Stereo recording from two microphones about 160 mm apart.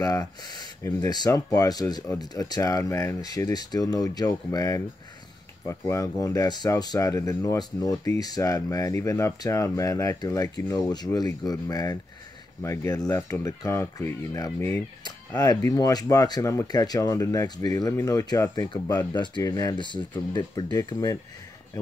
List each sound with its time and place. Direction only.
0.0 s speech: 20° left (ahead or behind)
15.0 s speech: 25° left (ahead or behind)